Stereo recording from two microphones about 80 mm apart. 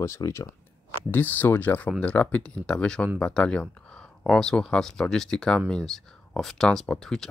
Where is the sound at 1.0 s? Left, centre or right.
Left.